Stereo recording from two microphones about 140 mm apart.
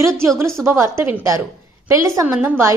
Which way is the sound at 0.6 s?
20° right (ahead or behind).